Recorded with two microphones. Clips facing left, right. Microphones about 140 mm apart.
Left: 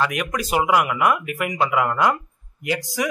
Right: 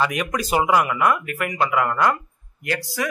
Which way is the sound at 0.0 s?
Centre (ahead or behind).